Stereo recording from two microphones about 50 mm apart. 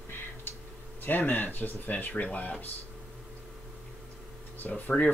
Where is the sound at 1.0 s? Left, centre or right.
Left.